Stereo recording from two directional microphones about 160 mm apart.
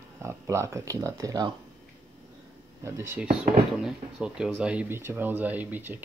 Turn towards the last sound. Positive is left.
turn(degrees=-10)  # may be behind; listen again after turning